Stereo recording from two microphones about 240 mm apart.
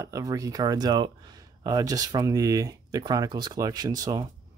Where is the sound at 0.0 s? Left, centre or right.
Centre.